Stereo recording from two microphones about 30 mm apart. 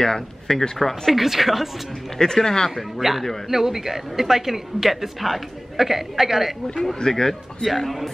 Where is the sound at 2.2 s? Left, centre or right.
Centre.